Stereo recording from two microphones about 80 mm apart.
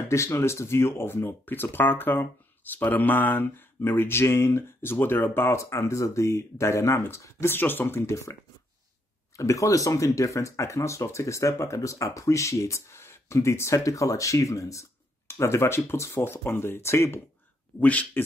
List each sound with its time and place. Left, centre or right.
0.1 s speech: left
9.4 s speech: left
17.7 s speech: centre